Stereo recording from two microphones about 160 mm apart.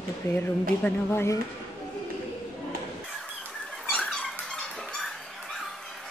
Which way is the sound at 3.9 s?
5° left (ahead or behind).